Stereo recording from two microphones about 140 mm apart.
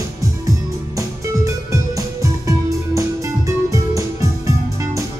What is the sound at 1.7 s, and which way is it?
Music, 25° right (ahead or behind).